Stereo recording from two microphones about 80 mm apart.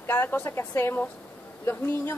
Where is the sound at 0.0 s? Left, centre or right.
Left.